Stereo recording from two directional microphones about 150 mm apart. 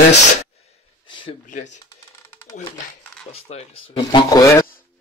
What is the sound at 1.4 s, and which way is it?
Speech, 55° left (ahead or behind).